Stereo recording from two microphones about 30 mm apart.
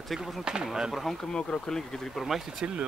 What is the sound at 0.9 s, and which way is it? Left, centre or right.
Speech, centre.